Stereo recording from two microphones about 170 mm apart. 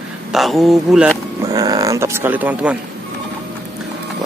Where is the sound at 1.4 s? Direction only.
20° right (ahead or behind).